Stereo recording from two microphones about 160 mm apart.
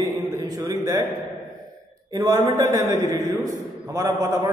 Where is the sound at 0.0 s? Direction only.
20° right (ahead or behind).